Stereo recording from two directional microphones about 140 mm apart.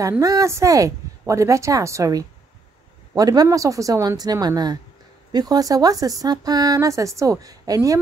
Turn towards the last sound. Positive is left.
turn(degrees=-25)  # may be behind; listen again after turning